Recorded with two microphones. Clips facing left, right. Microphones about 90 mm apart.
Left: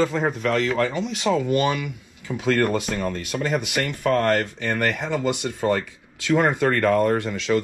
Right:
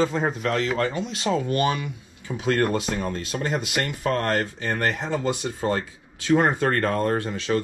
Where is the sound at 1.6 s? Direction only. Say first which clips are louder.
Left 1 dB; 20° right (ahead or behind).